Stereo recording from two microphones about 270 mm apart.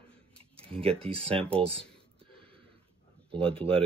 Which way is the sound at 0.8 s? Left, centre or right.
Right.